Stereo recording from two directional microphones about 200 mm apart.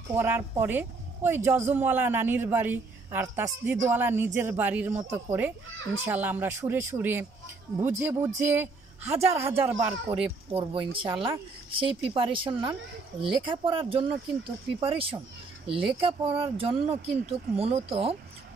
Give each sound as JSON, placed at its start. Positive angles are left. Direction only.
{"t": 0.1, "sound": "speech", "side_deg": -10}
{"t": 10.0, "sound": "speech", "side_deg": -25}